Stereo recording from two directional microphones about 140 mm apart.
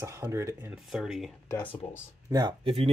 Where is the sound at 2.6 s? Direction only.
40° right (ahead or behind).